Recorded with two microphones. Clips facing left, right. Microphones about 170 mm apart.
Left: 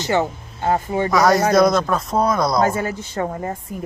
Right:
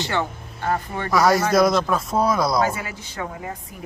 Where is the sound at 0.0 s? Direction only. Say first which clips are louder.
Left 5 dB; 45° left (ahead or behind).